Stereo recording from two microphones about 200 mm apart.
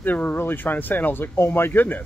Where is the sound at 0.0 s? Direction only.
10° left (ahead or behind).